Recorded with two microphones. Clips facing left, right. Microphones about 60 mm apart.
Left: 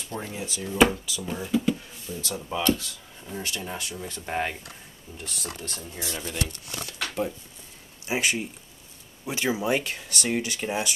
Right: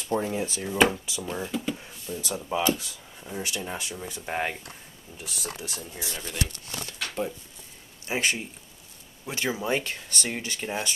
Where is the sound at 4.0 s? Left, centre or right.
Centre.